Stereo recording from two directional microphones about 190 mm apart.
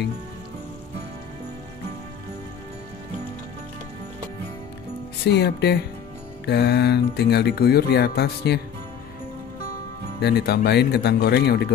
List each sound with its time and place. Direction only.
5.2 s speech: 60° left (ahead or behind)
10.2 s speech: 60° left (ahead or behind)